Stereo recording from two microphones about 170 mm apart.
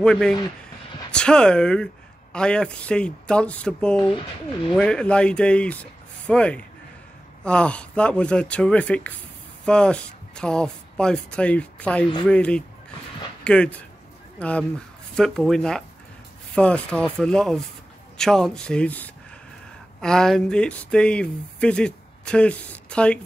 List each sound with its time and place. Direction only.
0.0 s speech: 5° left (ahead or behind)
4.1 s speech: 30° left (ahead or behind)
4.7 s speech: 5° left (ahead or behind)